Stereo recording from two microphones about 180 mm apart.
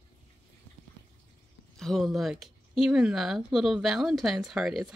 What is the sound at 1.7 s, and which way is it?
Speech, centre (ahead or behind).